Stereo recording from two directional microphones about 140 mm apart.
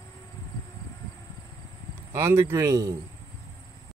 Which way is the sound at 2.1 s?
15° right (ahead or behind).